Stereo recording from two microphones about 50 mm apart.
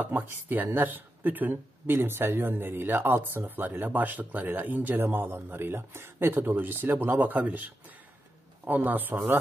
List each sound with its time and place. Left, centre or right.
0.0 s speech: right
1.9 s speech: right
5.0 s speech: right